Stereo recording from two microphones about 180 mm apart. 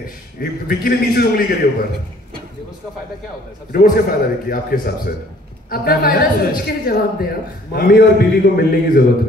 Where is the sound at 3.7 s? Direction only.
55° left (ahead or behind).